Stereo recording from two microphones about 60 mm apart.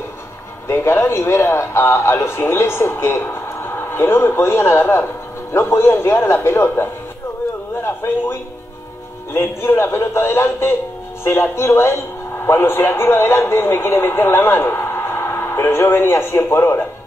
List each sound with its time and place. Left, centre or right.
0.7 s speech: left
7.8 s a sound: left
9.3 s a man's voice: left